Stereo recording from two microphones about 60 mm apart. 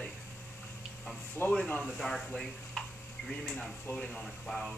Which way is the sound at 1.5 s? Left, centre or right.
Centre.